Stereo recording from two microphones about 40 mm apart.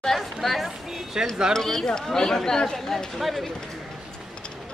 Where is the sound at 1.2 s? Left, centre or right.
Centre.